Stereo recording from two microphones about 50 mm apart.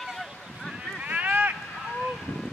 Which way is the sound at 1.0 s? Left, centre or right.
Right.